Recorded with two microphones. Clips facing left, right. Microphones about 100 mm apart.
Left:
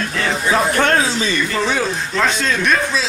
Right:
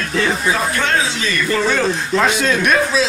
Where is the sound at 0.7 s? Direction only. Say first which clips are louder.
Left 3 dB; 45° left (ahead or behind).